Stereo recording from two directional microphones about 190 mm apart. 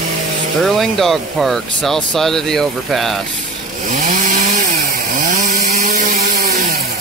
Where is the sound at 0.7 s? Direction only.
Centre (ahead or behind).